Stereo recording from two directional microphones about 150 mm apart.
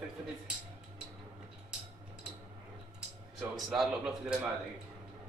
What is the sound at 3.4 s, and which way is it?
A man's voice, centre (ahead or behind).